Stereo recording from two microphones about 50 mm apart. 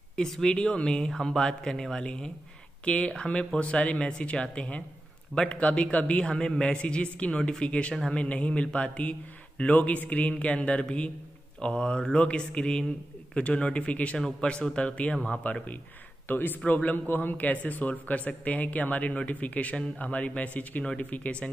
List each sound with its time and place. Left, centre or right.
0.1 s speech: centre
14.1 s speech: centre
16.3 s speech: left